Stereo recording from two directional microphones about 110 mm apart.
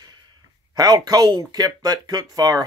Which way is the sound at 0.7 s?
35° right (ahead or behind).